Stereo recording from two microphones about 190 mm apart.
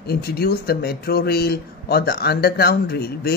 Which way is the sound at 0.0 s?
55° left (ahead or behind).